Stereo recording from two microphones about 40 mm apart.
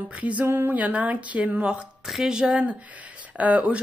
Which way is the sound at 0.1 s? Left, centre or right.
Right.